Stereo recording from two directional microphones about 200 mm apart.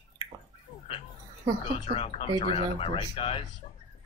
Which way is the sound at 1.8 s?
30° left (ahead or behind).